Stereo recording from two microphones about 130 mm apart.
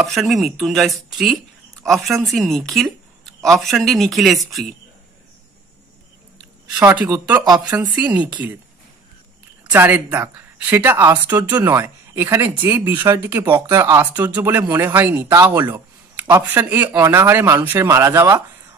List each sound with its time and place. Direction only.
0.0 s chopping: centre (ahead or behind)
6.8 s a man's voice: 20° right (ahead or behind)
7.4 s a woman's voice: 30° right (ahead or behind)
8.0 s a man's voice: 10° right (ahead or behind)
9.7 s a man's voice: 10° right (ahead or behind)